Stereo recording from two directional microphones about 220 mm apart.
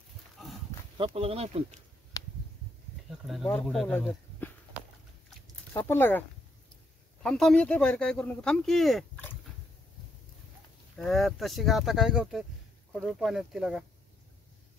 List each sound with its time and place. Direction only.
0.4 s livestock: centre (ahead or behind)
0.9 s speech: 25° right (ahead or behind)
2.1 s a sound: 15° left (ahead or behind)
3.3 s speech: centre (ahead or behind)
5.7 s speech: 10° left (ahead or behind)
7.2 s speech: centre (ahead or behind)
11.0 s speech: centre (ahead or behind)